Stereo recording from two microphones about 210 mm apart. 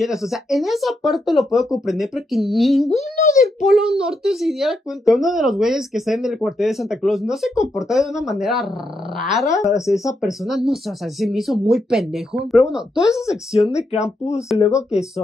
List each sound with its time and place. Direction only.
0.0 s speech: centre (ahead or behind)
2.9 s speech: 30° left (ahead or behind)
3.6 s speech: centre (ahead or behind)
13.1 s speech: 15° left (ahead or behind)
13.7 s speech: 30° left (ahead or behind)